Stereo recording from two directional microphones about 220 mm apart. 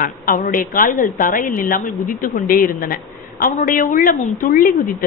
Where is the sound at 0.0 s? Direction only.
40° left (ahead or behind).